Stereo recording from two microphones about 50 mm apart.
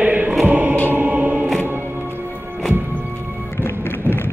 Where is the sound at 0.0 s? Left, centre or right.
Right.